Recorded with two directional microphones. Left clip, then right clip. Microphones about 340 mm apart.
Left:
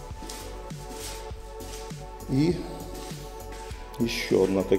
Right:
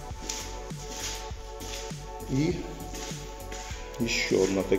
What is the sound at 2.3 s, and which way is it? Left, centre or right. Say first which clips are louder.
Speech: left 4 dB; centre.